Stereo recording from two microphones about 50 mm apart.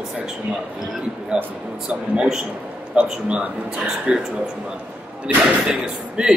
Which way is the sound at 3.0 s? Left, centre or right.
Right.